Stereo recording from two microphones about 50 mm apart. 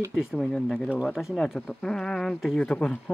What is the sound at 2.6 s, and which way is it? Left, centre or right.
Speech, centre.